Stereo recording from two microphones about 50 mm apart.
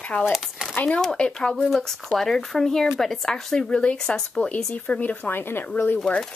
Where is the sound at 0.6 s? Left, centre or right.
Centre.